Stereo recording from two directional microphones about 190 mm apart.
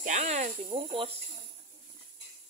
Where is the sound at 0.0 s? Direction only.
40° right (ahead or behind).